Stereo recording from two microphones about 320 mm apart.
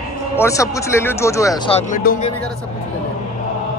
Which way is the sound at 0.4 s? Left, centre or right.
Centre.